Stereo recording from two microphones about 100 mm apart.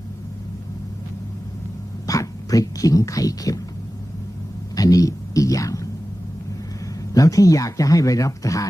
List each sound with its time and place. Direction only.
2.0 s speech: 35° left (ahead or behind)
4.7 s speech: 35° left (ahead or behind)
7.2 s speech: 35° left (ahead or behind)